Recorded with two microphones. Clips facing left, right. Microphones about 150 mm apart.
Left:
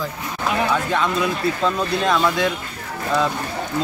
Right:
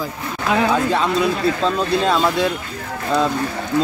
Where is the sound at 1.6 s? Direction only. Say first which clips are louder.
Right 2 dB; 30° right (ahead or behind).